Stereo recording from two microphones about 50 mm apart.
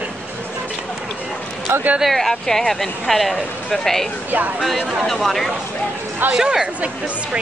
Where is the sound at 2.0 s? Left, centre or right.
Centre.